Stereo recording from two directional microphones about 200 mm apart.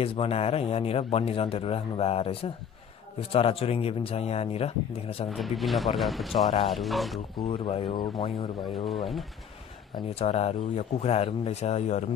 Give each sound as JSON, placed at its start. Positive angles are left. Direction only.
{"t": 0.0, "sound": "speech", "side_deg": 30}
{"t": 5.3, "sound": "speech", "side_deg": 0}
{"t": 7.3, "sound": "speech", "side_deg": 25}
{"t": 8.7, "sound": "speech", "side_deg": 0}
{"t": 10.1, "sound": "speech", "side_deg": 30}